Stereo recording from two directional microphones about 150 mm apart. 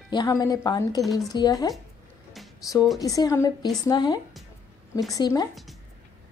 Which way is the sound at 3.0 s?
25° left (ahead or behind).